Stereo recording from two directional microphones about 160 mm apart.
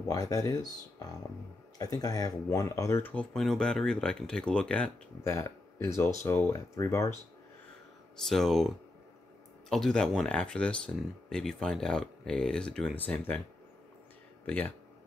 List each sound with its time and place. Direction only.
0.1 s speech: 20° left (ahead or behind)
5.3 s speech: 15° left (ahead or behind)
8.3 s speech: centre (ahead or behind)
14.4 s speech: 10° left (ahead or behind)